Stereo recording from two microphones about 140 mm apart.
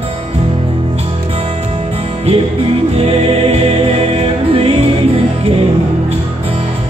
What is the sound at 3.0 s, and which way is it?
Music, 45° right (ahead or behind).